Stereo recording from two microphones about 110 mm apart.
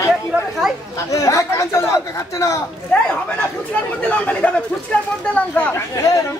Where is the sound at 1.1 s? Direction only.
30° left (ahead or behind).